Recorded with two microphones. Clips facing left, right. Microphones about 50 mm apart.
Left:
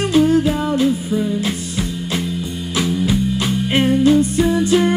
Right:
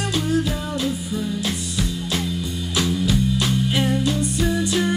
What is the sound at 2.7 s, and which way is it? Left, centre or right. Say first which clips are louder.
Music: left 3 dB; centre.